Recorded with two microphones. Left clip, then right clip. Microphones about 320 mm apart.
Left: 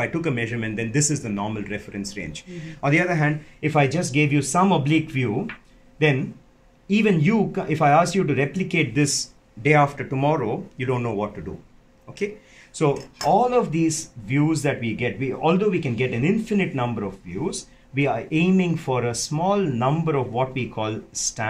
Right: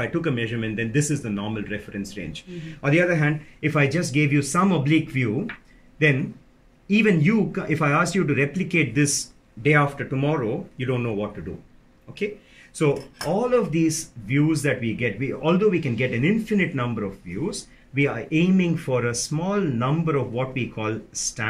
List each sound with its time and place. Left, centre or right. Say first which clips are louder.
0.0 s speech: left 1 dB; centre
6.9 s speech: even; centre
13.3 s speech: left 3 dB; centre